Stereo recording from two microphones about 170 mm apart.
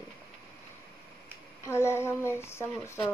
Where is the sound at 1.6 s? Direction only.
15° left (ahead or behind).